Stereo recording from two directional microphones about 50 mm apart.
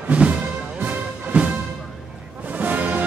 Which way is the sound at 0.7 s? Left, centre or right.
Right.